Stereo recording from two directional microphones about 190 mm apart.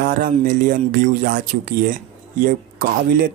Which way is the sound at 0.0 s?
45° right (ahead or behind).